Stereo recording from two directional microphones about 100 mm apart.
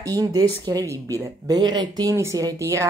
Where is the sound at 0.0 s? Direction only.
40° right (ahead or behind).